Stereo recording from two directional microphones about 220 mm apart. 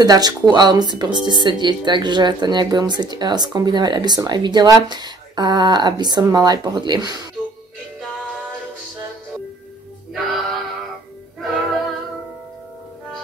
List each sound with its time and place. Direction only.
0.0 s speech: 20° right (ahead or behind)
10.1 s music: centre (ahead or behind)